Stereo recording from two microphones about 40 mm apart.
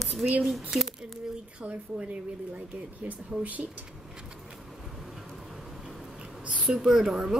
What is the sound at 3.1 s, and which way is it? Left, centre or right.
Speech, right.